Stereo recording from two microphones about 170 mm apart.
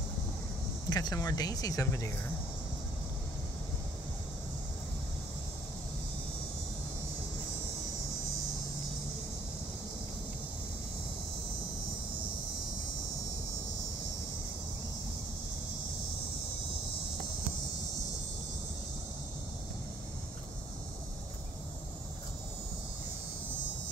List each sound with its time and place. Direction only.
0.8 s speech: 20° left (ahead or behind)